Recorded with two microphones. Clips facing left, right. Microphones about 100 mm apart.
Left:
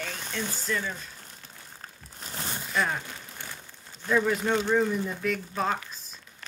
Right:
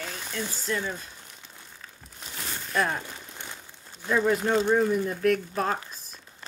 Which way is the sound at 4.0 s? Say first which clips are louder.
Right 1 dB; 10° right (ahead or behind).